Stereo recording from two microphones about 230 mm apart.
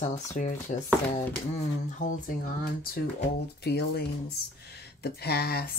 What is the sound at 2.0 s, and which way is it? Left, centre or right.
Speech, left.